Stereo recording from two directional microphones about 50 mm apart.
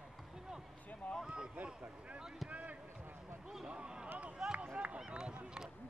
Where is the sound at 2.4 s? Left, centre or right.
Right.